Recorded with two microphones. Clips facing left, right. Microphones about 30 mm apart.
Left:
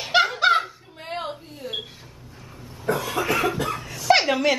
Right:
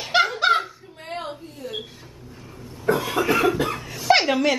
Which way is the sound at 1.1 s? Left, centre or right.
Centre.